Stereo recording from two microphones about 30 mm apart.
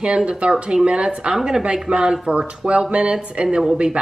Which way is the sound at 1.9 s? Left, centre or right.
Right.